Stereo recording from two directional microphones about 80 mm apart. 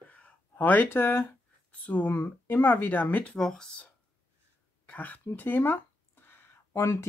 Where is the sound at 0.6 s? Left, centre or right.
Left.